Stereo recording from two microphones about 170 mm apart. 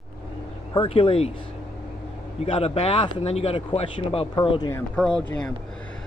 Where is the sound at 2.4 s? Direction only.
35° left (ahead or behind).